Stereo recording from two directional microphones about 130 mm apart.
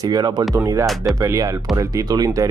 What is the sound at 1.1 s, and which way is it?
Speech, 25° right (ahead or behind).